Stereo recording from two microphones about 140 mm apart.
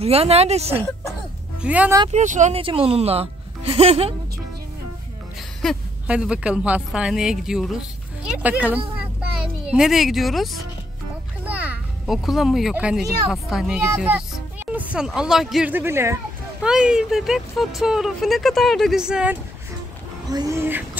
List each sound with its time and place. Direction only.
0.0 s speech: 45° right (ahead or behind)
1.6 s speech: 10° right (ahead or behind)
2.1 s speech: 60° right (ahead or behind)
2.5 s speech: 40° right (ahead or behind)
5.6 s speech: centre (ahead or behind)
6.0 s speech: 10° right (ahead or behind)
11.4 s a sound: 5° right (ahead or behind)
13.3 s speech: 5° right (ahead or behind)
15.7 s speech: 15° right (ahead or behind)
16.6 s speech: 5° right (ahead or behind)
20.2 s speech: 25° right (ahead or behind)